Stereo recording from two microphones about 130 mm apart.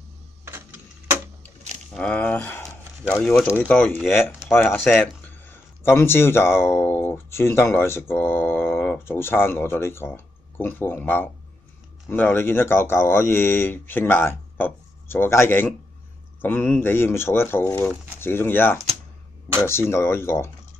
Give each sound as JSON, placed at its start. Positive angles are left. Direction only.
{"t": 2.0, "sound": "speech", "side_deg": 10}
{"t": 2.6, "sound": "a sound", "side_deg": 0}
{"t": 3.6, "sound": "speech", "side_deg": 10}